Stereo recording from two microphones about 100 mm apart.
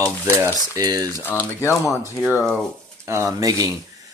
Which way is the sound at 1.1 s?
20° left (ahead or behind).